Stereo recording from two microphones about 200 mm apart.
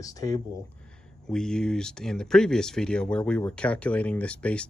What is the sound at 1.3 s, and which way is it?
Speech, 5° left (ahead or behind).